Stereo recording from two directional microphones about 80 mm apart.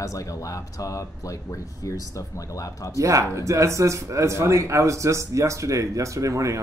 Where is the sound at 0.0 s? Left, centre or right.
Left.